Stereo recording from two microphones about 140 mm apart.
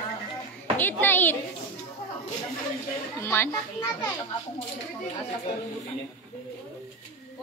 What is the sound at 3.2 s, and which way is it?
Speech, 15° left (ahead or behind).